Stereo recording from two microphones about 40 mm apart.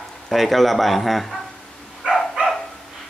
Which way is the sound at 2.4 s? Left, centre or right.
Right.